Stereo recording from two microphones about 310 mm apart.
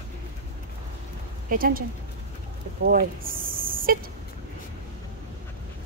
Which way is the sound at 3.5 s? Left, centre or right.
Right.